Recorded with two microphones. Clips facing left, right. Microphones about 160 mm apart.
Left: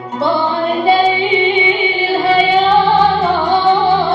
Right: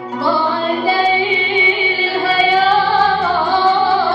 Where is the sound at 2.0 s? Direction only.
20° left (ahead or behind).